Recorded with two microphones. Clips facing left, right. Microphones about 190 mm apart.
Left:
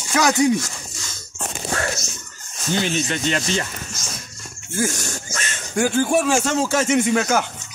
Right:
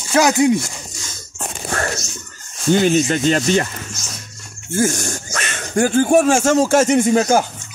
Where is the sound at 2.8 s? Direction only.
40° right (ahead or behind).